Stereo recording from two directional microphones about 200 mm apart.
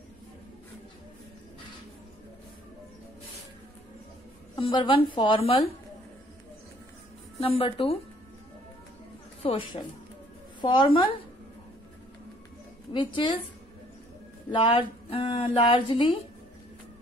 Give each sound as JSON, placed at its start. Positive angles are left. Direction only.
{"t": 4.6, "sound": "speech", "side_deg": 25}
{"t": 7.3, "sound": "speech", "side_deg": 30}
{"t": 9.4, "sound": "speech", "side_deg": 25}
{"t": 12.9, "sound": "speech", "side_deg": 25}
{"t": 14.5, "sound": "speech", "side_deg": 25}